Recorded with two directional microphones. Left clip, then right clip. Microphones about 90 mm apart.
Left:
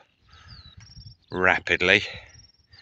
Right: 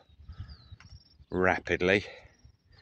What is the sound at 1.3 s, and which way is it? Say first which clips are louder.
Speech: left 6 dB; 35° right (ahead or behind).